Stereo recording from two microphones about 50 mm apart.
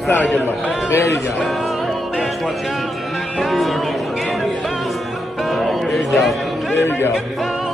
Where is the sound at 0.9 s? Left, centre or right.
Left.